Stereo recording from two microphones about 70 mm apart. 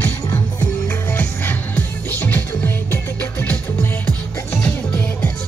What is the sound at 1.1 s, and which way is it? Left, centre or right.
Music, left.